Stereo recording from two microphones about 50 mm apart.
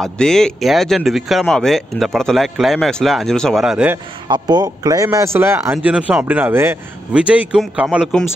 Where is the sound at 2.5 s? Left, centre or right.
Centre.